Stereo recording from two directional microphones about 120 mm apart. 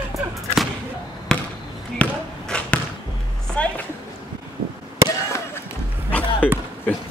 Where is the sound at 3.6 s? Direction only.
10° left (ahead or behind).